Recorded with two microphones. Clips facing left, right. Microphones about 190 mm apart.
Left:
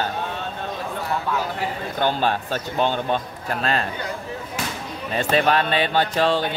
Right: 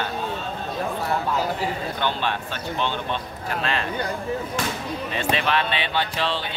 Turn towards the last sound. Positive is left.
turn(degrees=45)  # may be behind; listen again after turning